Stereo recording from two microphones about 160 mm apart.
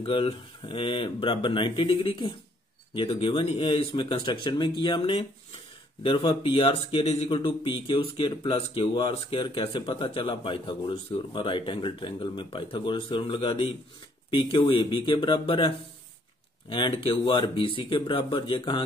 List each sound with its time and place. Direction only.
0.0 s speech: 35° left (ahead or behind)